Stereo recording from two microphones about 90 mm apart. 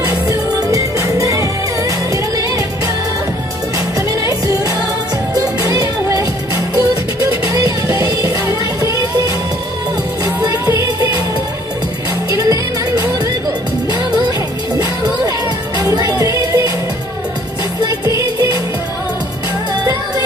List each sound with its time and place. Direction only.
0.0 s music: 40° right (ahead or behind)
4.3 s music: 40° right (ahead or behind)
10.4 s music: 40° right (ahead or behind)
12.3 s music: 40° right (ahead or behind)
15.8 s music: 40° right (ahead or behind)
17.8 s music: 35° right (ahead or behind)